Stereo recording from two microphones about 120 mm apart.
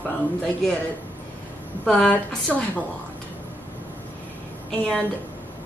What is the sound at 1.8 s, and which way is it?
A woman's voice, 10° left (ahead or behind).